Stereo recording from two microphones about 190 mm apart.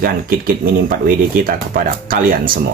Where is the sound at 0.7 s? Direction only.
45° right (ahead or behind).